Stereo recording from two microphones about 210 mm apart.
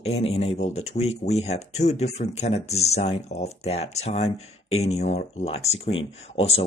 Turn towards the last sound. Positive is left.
turn(degrees=30)  # may be behind; listen again after turning